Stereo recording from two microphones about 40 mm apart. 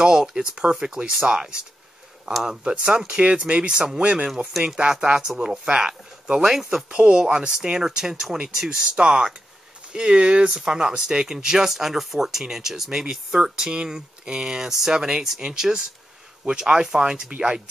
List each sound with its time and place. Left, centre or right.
0.0 s speech: centre
2.7 s speech: right
4.0 s speech: right
4.8 s speech: centre
6.9 s speech: right
8.6 s speech: right